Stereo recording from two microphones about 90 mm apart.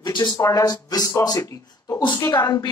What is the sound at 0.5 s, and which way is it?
Speech, 40° left (ahead or behind).